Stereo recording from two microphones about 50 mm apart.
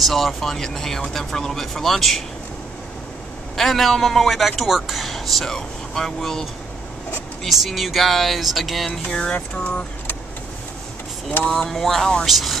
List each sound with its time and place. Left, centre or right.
0.0 s speech: centre
3.5 s speech: centre
7.4 s speech: centre
9.3 s a sound: left
11.4 s speech: centre
12.3 s speech: centre